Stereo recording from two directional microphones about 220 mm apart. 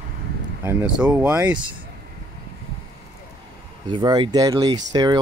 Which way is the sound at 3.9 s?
20° right (ahead or behind).